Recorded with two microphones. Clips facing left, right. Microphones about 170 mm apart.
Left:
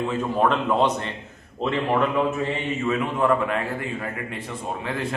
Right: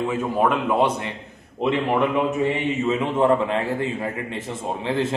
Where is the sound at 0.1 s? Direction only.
10° right (ahead or behind).